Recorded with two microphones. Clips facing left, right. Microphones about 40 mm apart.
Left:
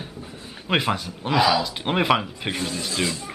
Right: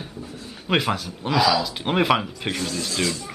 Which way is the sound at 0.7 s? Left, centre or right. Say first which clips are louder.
Even; centre.